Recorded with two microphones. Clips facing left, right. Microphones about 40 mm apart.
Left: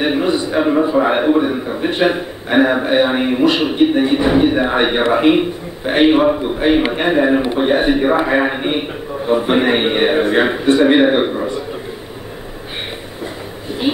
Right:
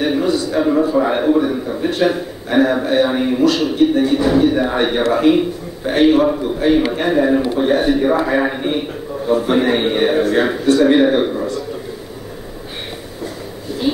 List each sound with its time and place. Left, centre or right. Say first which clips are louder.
0.0 s a man's voice: left 1 dB; left